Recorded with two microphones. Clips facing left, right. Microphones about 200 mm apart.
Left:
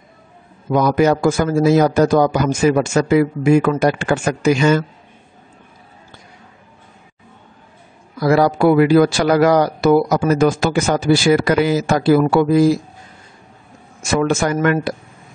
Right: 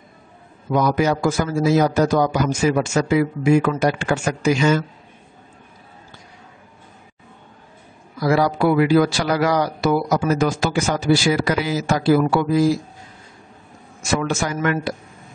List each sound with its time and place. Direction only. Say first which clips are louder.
0.7 s speech: left 4 dB; 55° left (ahead or behind)
8.2 s speech: left 4 dB; 55° left (ahead or behind)
14.0 s speech: left 5 dB; 55° left (ahead or behind)